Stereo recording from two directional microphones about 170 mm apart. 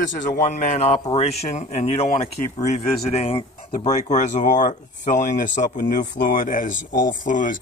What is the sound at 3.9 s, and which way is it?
A man's voice, 45° left (ahead or behind).